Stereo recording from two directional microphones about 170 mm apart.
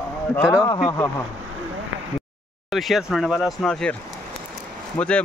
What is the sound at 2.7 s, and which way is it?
Speech, centre (ahead or behind).